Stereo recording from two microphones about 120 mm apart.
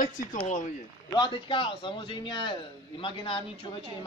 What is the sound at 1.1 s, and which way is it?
Speech, 40° left (ahead or behind).